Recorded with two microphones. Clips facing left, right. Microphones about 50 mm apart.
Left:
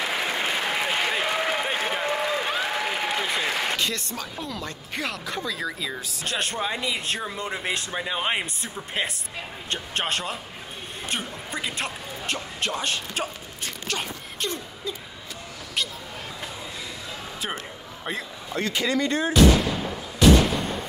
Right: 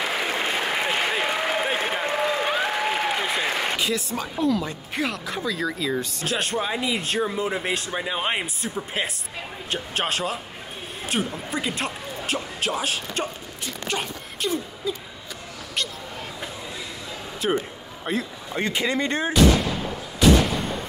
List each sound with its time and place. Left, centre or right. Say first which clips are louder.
0.1 s applause: right 1 dB; centre
4.4 s speech: right 9 dB; centre
14.4 s a sound: right 5 dB; centre
17.4 s speech: right 10 dB; centre
18.5 s speech: even; centre
20.2 s artillery fire: even; centre